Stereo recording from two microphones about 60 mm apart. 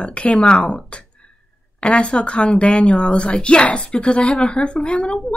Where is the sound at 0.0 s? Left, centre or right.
Centre.